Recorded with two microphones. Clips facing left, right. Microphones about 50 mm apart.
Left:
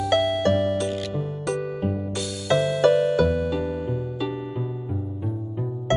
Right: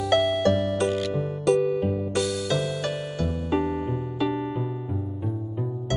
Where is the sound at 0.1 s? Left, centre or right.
Centre.